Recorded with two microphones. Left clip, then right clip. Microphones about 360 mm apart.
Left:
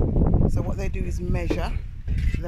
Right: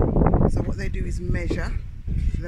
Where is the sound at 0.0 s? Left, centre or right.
Right.